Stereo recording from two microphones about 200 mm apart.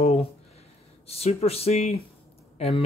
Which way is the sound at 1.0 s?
30° left (ahead or behind).